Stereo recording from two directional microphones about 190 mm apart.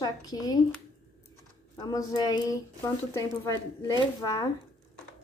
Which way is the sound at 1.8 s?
20° left (ahead or behind).